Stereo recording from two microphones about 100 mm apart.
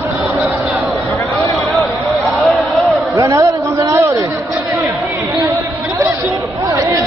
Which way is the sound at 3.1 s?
30° right (ahead or behind).